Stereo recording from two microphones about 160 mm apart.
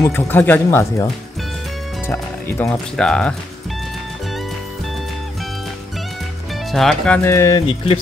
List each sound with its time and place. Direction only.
0.0 s speech: 15° left (ahead or behind)
2.4 s speech: 15° left (ahead or behind)
6.7 s speech: centre (ahead or behind)
7.2 s speech: 20° left (ahead or behind)